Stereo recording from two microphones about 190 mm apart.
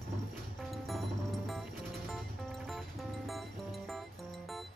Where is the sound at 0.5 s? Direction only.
Centre (ahead or behind).